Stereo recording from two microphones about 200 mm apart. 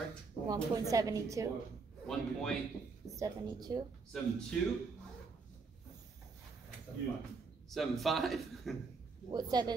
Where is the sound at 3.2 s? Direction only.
20° right (ahead or behind).